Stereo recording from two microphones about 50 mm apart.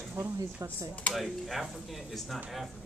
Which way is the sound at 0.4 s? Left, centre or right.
Right.